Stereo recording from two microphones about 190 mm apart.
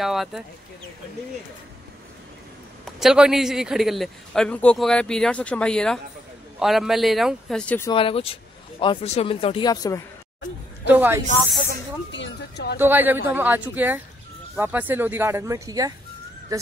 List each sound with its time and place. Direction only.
0.0 s a man's voice: centre (ahead or behind)
2.8 s a man's voice: centre (ahead or behind)
7.9 s speech: 30° left (ahead or behind)
10.9 s speech: 10° right (ahead or behind)
12.1 s speech: 65° left (ahead or behind)
12.7 s speech: 10° right (ahead or behind)